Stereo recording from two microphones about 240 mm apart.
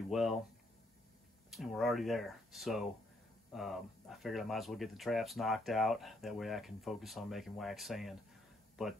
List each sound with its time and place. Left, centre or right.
0.1 s speech: centre
1.5 s speech: centre